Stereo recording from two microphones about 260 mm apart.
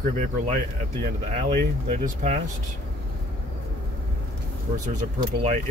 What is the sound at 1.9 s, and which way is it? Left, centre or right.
Speech, right.